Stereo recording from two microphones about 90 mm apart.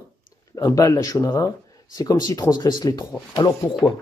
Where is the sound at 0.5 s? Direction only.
40° left (ahead or behind).